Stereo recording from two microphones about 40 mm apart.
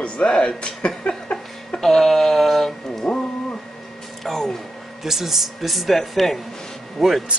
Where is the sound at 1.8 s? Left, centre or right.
Centre.